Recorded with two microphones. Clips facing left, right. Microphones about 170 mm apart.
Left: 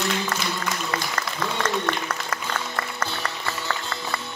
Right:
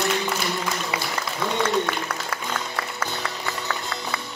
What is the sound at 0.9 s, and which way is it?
Music, 10° right (ahead or behind).